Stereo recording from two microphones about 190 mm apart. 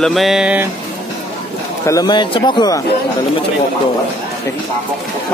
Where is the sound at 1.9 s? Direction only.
20° left (ahead or behind).